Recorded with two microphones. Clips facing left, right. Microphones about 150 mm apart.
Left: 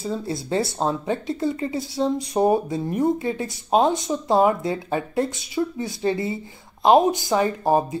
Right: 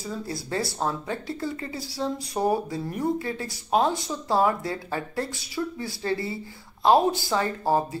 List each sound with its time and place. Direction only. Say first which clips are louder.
0.0 s speech: left 6 dB; 25° left (ahead or behind)